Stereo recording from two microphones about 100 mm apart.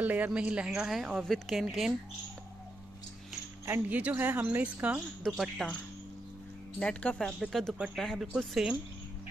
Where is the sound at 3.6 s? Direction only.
20° right (ahead or behind).